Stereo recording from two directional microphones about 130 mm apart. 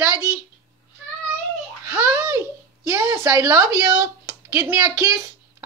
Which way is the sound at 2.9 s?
20° right (ahead or behind).